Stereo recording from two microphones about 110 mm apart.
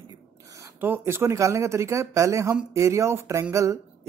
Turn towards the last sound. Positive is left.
turn(degrees=-25)  # may be behind; listen again after turning